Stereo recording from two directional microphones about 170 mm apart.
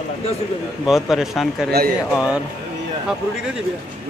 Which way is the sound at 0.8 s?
Centre (ahead or behind).